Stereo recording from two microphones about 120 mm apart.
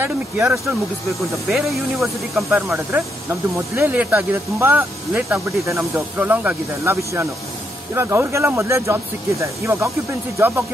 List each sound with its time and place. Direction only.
0.0 s speech: 15° right (ahead or behind)
1.3 s speech: centre (ahead or behind)
2.7 s speech: 20° right (ahead or behind)